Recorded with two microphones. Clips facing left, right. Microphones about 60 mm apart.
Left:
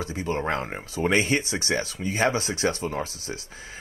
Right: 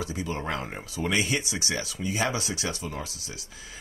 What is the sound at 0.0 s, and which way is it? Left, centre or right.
Speech, left.